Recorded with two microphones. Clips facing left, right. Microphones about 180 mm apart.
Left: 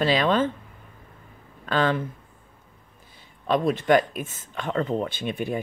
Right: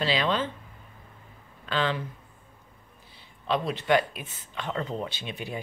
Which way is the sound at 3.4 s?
50° left (ahead or behind).